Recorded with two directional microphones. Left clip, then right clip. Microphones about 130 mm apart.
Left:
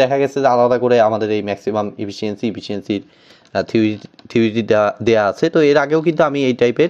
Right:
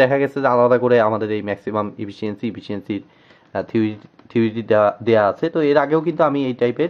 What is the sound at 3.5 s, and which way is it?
Speech, 25° left (ahead or behind).